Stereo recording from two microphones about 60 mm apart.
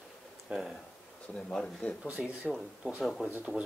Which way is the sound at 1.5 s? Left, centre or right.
Centre.